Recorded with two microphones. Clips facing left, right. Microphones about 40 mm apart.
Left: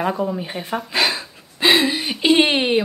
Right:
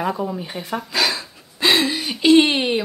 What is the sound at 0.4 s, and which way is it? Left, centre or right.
A woman's voice, centre.